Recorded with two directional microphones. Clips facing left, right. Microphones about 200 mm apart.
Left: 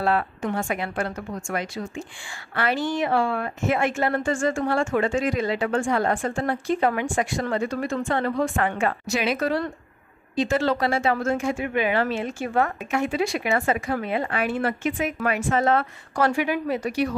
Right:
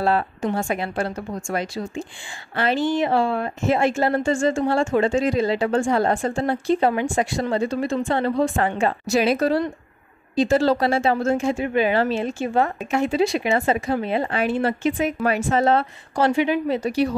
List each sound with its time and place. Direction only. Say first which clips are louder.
0.0 s a woman's voice: right 2 dB; 30° right (ahead or behind)